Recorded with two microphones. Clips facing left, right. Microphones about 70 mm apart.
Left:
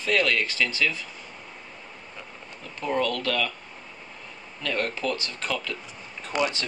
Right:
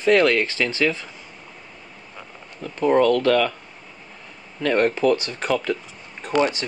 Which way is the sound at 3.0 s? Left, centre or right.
Right.